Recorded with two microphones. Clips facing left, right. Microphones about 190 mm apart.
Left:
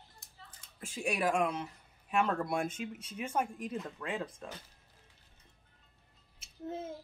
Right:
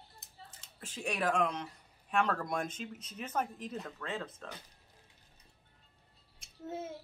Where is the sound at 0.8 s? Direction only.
10° left (ahead or behind).